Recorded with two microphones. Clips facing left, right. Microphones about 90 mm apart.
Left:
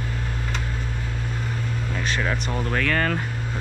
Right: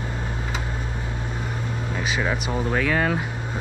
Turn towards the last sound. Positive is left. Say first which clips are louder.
# right 1 dB
turn(degrees=-10)  # may be behind; listen again after turning